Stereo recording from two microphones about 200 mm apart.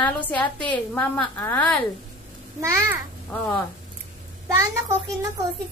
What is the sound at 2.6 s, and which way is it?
Speech, 15° right (ahead or behind).